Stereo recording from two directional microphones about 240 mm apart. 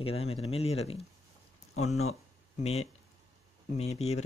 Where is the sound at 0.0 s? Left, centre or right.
Left.